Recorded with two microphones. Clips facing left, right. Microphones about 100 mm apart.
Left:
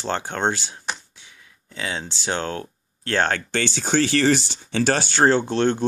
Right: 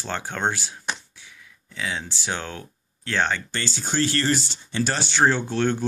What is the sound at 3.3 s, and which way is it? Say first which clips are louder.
Speech: left 6 dB; 70° left (ahead or behind).